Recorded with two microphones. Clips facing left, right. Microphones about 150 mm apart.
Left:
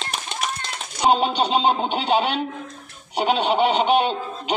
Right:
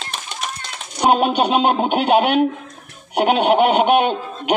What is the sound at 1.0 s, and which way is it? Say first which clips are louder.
Music: right 3 dB; 55° right (ahead or behind).